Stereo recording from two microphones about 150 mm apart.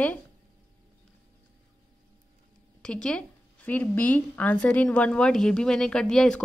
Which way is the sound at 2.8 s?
5° left (ahead or behind).